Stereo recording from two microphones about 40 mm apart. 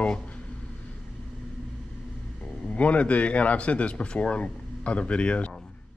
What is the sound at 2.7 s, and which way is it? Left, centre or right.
Speech, left.